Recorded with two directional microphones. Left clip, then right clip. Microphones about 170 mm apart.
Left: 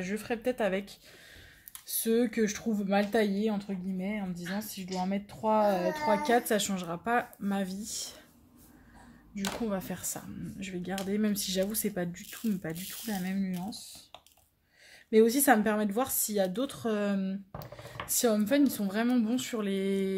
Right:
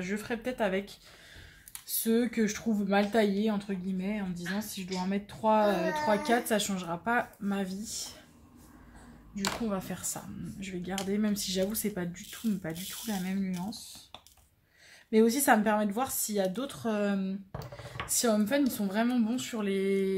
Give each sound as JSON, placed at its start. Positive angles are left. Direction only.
{"t": 0.0, "sound": "speech", "side_deg": 50}
{"t": 9.3, "sound": "speech", "side_deg": 45}
{"t": 15.0, "sound": "speech", "side_deg": 55}